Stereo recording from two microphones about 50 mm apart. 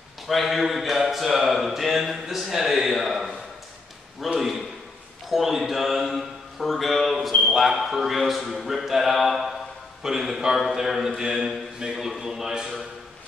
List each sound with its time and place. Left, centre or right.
0.3 s speech: centre
4.4 s a man's voice: centre